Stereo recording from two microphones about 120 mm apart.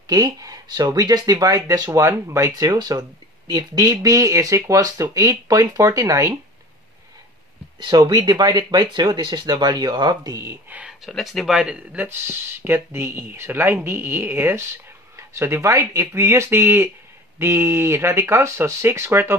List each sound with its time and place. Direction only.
0.0 s speech: 30° right (ahead or behind)
7.8 s speech: 35° right (ahead or behind)
10.7 s a sound: 10° right (ahead or behind)
11.1 s speech: centre (ahead or behind); by 19.3 s 20° right (ahead or behind)